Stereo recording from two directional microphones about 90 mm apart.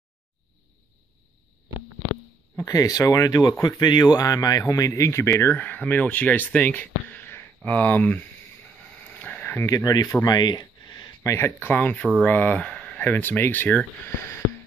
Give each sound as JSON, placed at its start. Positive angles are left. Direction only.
{"t": 2.5, "sound": "speech", "side_deg": 40}
{"t": 3.8, "sound": "speech", "side_deg": 50}
{"t": 5.4, "sound": "speech", "side_deg": 20}
{"t": 9.0, "sound": "a sound", "side_deg": 20}
{"t": 9.7, "sound": "speech", "side_deg": 40}
{"t": 10.2, "sound": "a sound", "side_deg": 50}
{"t": 11.2, "sound": "speech", "side_deg": 30}
{"t": 11.7, "sound": "speech", "side_deg": 15}